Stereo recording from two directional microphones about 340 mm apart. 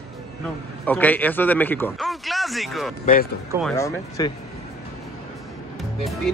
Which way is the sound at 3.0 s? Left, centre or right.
Left.